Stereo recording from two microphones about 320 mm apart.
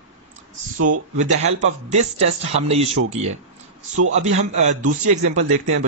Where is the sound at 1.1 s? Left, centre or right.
Right.